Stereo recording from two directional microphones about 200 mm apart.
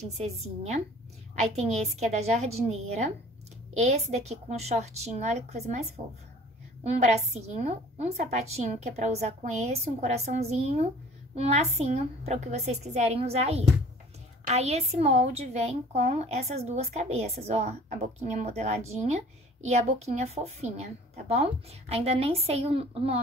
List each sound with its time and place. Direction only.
0.2 s a woman's voice: 35° right (ahead or behind)